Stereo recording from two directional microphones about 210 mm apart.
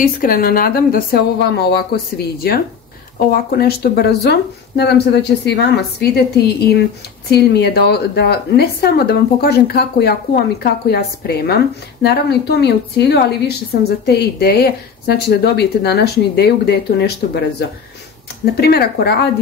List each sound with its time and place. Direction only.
0.0 s a woman's voice: 40° left (ahead or behind)